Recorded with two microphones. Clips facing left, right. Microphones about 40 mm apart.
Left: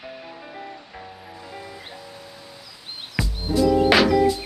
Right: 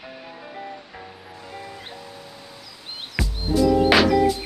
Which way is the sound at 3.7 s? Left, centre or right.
Centre.